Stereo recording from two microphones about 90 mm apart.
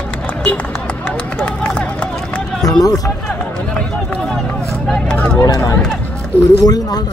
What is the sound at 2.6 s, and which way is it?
Run, 40° left (ahead or behind).